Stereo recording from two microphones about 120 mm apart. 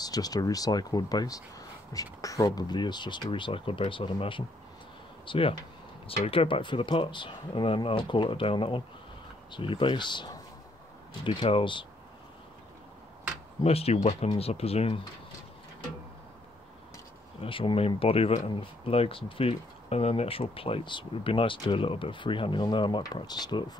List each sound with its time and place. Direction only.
0.0 s speech: 30° left (ahead or behind)
13.6 s speech: 55° left (ahead or behind)
17.4 s speech: 45° left (ahead or behind)